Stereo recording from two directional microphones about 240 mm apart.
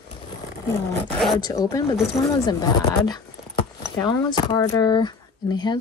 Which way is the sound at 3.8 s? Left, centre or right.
Centre.